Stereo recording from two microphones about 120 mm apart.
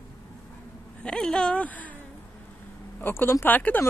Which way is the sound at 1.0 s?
5° left (ahead or behind).